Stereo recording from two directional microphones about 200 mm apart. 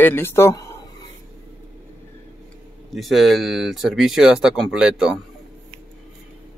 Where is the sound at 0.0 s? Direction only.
10° left (ahead or behind).